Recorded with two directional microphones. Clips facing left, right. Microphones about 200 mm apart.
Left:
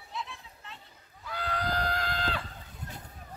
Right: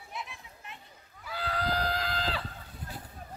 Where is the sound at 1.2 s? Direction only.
5° right (ahead or behind).